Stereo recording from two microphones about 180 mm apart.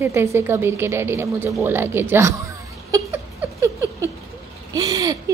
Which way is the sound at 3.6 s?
15° right (ahead or behind).